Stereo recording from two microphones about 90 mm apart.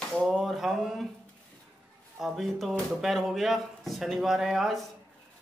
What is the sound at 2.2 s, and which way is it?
A man's voice, centre (ahead or behind).